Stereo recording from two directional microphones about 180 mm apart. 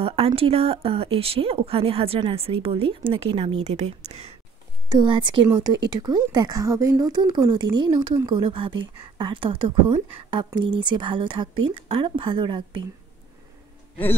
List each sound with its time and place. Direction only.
0.0 s speech: 30° right (ahead or behind)